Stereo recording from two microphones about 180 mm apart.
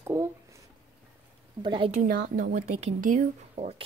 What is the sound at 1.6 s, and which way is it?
Speech, 25° right (ahead or behind).